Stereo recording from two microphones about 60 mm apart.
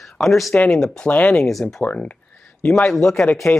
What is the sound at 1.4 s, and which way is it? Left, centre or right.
Speech, centre.